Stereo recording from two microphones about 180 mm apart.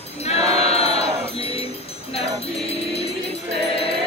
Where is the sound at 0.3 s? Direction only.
35° left (ahead or behind).